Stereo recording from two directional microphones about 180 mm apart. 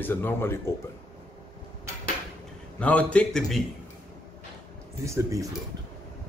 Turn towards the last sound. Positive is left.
turn(degrees=-15)  # may be behind; listen again after turning